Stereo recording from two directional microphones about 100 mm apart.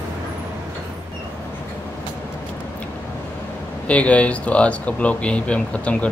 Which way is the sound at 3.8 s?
15° left (ahead or behind).